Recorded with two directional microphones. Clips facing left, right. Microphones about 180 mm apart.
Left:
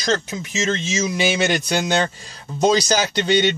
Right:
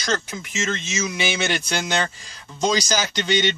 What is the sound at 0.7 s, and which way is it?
Speech, 30° left (ahead or behind).